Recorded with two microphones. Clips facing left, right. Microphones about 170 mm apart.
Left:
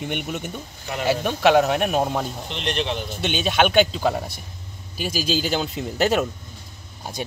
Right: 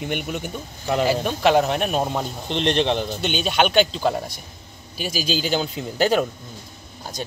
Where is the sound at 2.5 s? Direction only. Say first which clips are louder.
Right 7 dB; 30° right (ahead or behind).